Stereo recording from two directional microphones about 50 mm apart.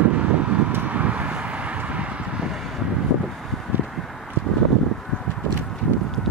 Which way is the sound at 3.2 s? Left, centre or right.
Centre.